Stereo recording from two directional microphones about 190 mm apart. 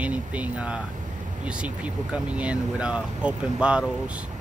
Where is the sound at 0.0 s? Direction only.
5° right (ahead or behind).